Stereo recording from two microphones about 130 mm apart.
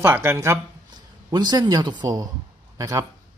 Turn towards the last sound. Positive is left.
turn(degrees=-25)  # may be behind; listen again after turning